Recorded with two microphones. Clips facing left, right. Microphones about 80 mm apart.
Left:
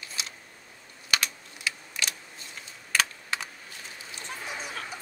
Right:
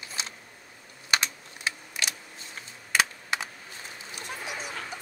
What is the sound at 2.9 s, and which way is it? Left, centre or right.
Typing, centre.